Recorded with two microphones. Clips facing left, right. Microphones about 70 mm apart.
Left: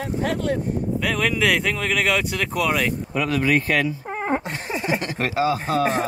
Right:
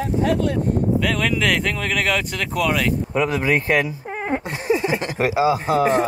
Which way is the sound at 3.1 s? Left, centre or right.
Right.